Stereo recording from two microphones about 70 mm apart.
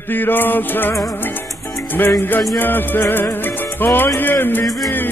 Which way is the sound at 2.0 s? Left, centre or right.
Left.